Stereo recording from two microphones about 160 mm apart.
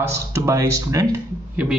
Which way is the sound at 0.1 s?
20° right (ahead or behind).